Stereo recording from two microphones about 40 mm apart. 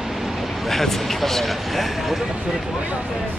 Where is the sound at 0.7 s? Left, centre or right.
Centre.